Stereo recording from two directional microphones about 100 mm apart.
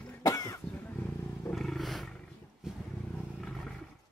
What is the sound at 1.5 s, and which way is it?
Roar, 5° left (ahead or behind).